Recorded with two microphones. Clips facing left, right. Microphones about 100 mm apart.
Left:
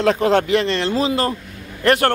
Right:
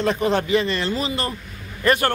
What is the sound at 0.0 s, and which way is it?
Speech, 90° left.